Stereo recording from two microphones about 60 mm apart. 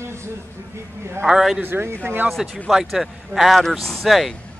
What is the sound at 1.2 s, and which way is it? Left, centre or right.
Speech, centre.